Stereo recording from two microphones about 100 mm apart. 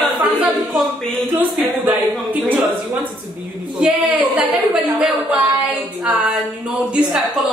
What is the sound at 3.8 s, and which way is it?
A man's voice, 10° right (ahead or behind).